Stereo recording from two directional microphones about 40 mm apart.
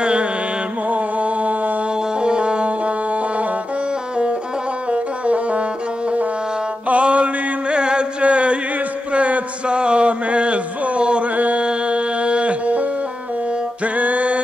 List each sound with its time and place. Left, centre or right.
0.0 s music: right
0.8 s music: right
2.1 s music: right
4.9 s music: right
6.9 s mantra: right
7.7 s a sound: right
11.3 s music: right
11.6 s music: right
13.9 s music: right